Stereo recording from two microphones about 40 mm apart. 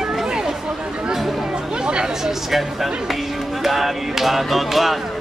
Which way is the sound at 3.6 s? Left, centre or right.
Centre.